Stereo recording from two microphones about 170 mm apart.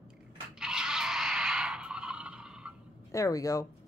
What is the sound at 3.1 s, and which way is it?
Speech, 20° left (ahead or behind).